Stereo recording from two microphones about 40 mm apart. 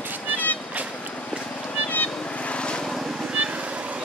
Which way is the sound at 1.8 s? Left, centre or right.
Left.